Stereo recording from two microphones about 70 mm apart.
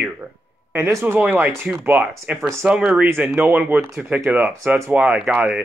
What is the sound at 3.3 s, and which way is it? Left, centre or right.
Speech, right.